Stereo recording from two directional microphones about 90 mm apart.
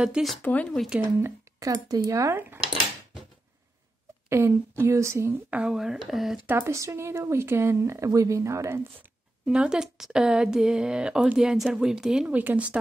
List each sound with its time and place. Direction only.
0.0 s a woman's voice: 10° right (ahead or behind)
0.4 s speech: 15° left (ahead or behind)
1.6 s speech: 40° right (ahead or behind)
2.3 s speech: 25° right (ahead or behind)
4.3 s speech: 30° right (ahead or behind)
5.3 s a woman's voice: 15° right (ahead or behind)
5.8 s speech: 5° right (ahead or behind)
6.4 s speech: 25° right (ahead or behind)
9.5 s a woman's voice: 10° right (ahead or behind)
12.4 s a woman's voice: 15° right (ahead or behind)